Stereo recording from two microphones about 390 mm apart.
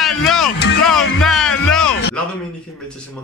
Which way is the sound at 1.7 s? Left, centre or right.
Centre.